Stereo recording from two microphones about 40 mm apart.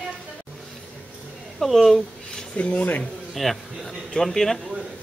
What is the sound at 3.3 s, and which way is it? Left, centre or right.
Speech, centre.